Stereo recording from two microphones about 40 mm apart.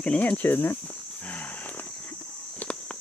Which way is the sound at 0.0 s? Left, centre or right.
Left.